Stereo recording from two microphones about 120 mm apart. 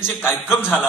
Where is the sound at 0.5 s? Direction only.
15° left (ahead or behind).